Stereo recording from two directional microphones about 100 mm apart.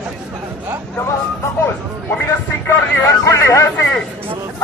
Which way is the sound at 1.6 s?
25° left (ahead or behind).